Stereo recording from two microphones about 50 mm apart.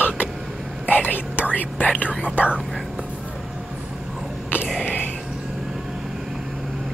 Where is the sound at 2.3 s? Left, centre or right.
Right.